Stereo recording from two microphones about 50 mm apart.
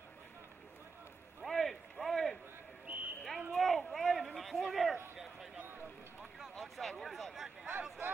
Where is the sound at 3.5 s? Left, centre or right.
Centre.